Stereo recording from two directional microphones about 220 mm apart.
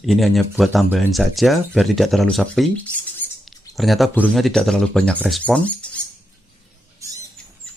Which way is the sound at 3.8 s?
Centre (ahead or behind).